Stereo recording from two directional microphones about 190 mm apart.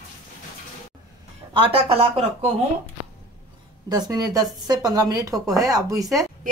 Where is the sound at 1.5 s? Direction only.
30° right (ahead or behind).